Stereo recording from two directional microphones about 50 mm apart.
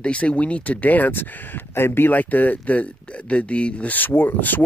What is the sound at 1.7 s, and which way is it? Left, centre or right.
Speech, left.